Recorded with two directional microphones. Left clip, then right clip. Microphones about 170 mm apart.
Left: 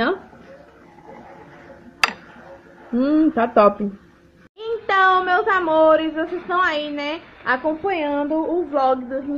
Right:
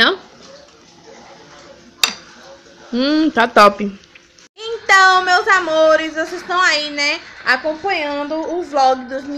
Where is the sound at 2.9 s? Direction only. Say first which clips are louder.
Right 2 dB; 20° right (ahead or behind).